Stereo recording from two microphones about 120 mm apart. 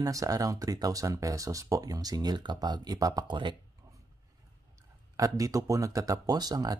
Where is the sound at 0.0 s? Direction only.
30° right (ahead or behind).